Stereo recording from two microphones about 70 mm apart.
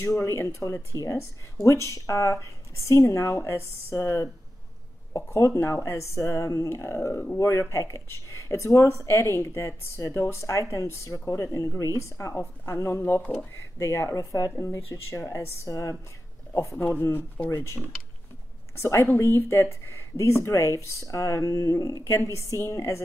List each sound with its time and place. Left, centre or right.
0.0 s a woman's voice: left
14.5 s speech: left
16.7 s speech: left
17.5 s speech: left
18.8 s a woman's voice: left